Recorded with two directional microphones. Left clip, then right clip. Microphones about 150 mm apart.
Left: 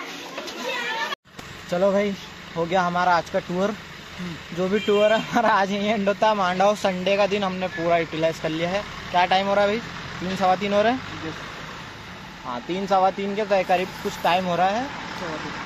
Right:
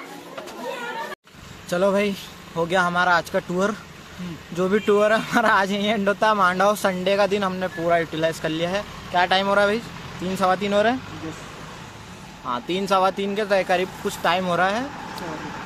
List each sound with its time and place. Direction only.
1.7 s speech: 25° right (ahead or behind)
3.3 s speech: 30° right (ahead or behind)
10.6 s speech: 20° right (ahead or behind)
12.4 s speech: 35° right (ahead or behind)